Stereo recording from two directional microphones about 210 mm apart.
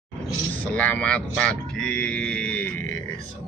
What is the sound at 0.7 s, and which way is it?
Speech, 5° left (ahead or behind).